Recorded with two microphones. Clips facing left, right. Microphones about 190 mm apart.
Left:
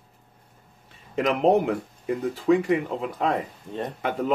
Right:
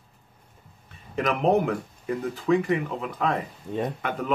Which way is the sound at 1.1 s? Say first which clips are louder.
Left 2 dB; 25° left (ahead or behind).